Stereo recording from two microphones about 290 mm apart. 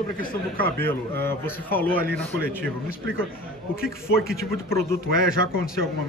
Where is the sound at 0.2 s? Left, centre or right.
Left.